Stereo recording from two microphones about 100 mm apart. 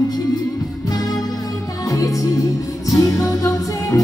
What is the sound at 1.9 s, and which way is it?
Music, 35° left (ahead or behind).